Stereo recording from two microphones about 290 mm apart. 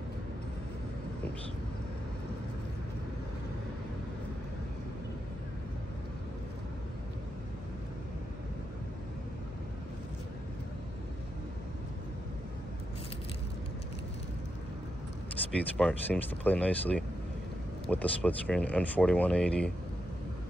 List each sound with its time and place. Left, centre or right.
15.5 s speech: centre